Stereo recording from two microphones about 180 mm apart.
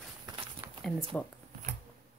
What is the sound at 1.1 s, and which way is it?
Speech, 10° left (ahead or behind).